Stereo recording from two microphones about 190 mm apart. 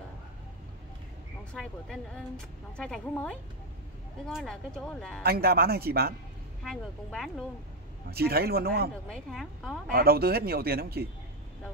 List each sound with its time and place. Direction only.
1.5 s a woman's voice: 5° left (ahead or behind)
5.2 s speech: 55° right (ahead or behind)
6.6 s a woman's voice: centre (ahead or behind)
8.1 s speech: 55° right (ahead or behind)
9.1 s a woman's voice: centre (ahead or behind)
9.8 s speech: 55° right (ahead or behind)